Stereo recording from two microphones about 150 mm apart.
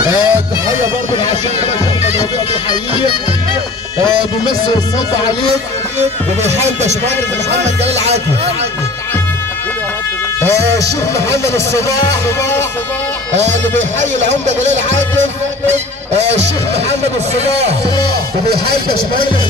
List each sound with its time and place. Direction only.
0.0 s speech: 15° right (ahead or behind)
5.9 s speech: 50° right (ahead or behind)
10.4 s speech: 20° left (ahead or behind)
14.4 s speech: 50° right (ahead or behind)